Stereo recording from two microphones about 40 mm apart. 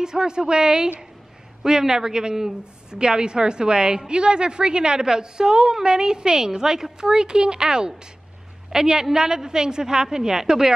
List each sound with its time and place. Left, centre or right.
0.0 s a woman's voice: centre